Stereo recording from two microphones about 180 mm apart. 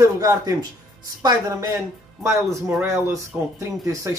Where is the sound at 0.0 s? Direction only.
20° right (ahead or behind).